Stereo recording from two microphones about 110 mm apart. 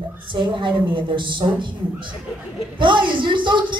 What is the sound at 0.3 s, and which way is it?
Speech, 45° right (ahead or behind).